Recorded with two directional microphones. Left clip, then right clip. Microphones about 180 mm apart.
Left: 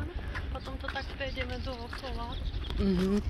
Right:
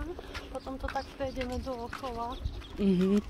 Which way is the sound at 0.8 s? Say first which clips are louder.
Right 1 dB; 40° right (ahead or behind).